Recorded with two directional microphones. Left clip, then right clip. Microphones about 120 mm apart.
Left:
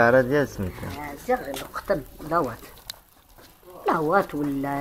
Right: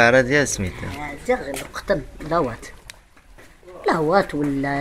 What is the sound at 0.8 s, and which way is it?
Speech, 40° right (ahead or behind).